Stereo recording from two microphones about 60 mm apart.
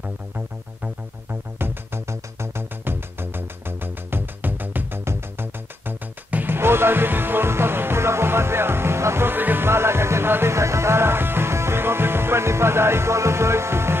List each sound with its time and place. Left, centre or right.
1.6 s music: right